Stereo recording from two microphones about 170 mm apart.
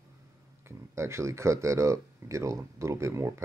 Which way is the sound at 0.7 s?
15° right (ahead or behind).